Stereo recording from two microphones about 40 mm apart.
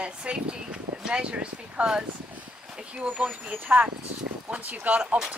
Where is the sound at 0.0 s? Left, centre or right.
Right.